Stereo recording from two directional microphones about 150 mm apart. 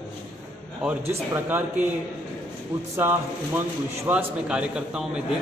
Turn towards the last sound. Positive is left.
turn(degrees=-5)  # may be behind; listen again after turning